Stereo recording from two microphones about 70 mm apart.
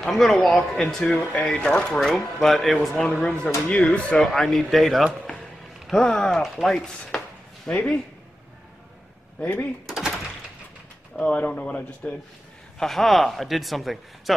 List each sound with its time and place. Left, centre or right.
0.0 s a man's voice: centre
4.3 s a man's voice: centre
5.9 s a man's voice: centre
7.6 s speech: centre
9.4 s speech: left
11.2 s speech: centre
12.7 s a man's voice: centre